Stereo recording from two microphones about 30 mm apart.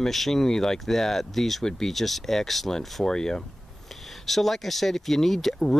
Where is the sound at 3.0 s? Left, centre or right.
Left.